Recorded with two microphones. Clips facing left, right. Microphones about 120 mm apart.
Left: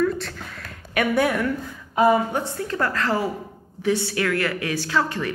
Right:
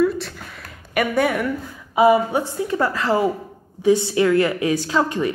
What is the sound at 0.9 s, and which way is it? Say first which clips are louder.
A woman's voice: right 1 dB; centre (ahead or behind).